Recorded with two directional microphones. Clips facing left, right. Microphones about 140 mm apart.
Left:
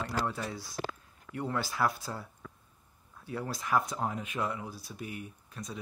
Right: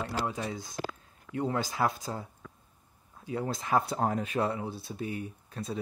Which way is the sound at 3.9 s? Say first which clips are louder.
Right 5 dB; 40° right (ahead or behind).